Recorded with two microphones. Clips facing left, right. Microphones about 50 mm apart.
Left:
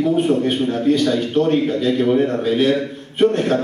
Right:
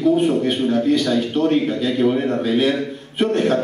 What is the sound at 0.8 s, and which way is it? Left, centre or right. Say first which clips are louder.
A man's voice: left 2 dB; centre.